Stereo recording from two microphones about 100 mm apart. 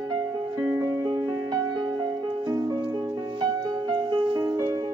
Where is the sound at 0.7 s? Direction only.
30° right (ahead or behind).